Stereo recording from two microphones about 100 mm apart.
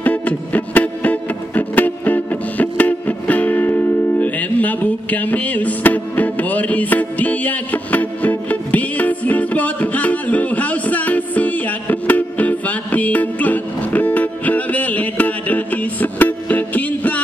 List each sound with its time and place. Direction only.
0.0 s music: 15° left (ahead or behind)